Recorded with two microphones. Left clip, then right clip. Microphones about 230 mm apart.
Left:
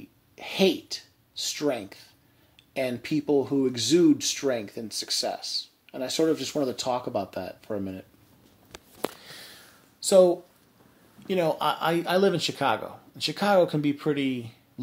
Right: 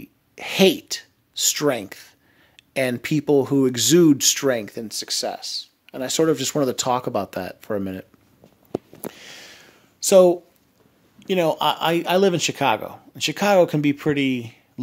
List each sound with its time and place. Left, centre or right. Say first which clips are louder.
0.0 s speech: right 7 dB; right
9.2 s a sound: right 4 dB; right
11.2 s speech: right 5 dB; right